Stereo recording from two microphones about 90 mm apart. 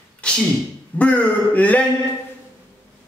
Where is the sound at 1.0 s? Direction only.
15° left (ahead or behind).